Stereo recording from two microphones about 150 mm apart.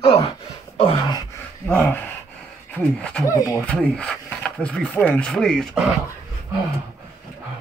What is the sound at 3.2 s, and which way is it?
Speech, 20° left (ahead or behind).